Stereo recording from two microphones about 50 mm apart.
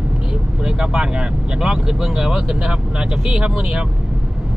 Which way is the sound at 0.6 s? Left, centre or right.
Centre.